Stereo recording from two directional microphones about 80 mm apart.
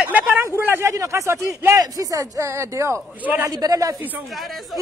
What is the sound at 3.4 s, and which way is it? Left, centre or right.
Speech, right.